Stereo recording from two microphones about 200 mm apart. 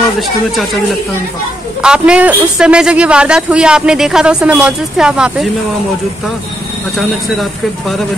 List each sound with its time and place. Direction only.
1.8 s a man's voice: 5° right (ahead or behind)